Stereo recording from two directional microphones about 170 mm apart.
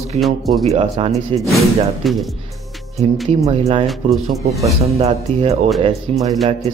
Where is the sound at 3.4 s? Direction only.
35° right (ahead or behind).